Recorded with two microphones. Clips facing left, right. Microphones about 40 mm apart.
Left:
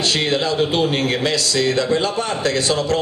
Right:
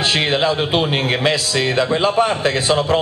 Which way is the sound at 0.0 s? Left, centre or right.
Right.